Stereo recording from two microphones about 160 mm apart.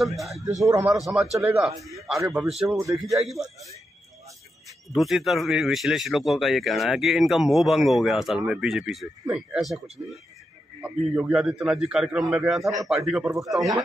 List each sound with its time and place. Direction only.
0.0 s speech: centre (ahead or behind)
0.6 s speech: 20° right (ahead or behind)
0.8 s speech: 5° right (ahead or behind)
2.8 s speech: 20° right (ahead or behind)
3.2 s speech: centre (ahead or behind)
4.9 s speech: centre (ahead or behind)